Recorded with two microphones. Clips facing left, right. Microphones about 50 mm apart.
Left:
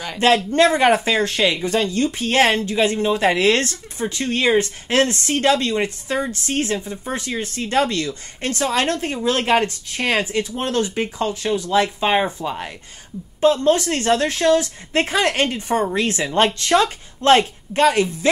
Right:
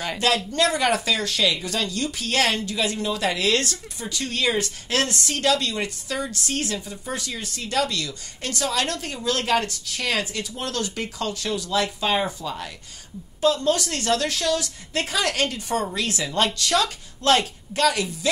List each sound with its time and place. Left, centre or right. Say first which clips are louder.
0.2 s speech: left 7 dB; left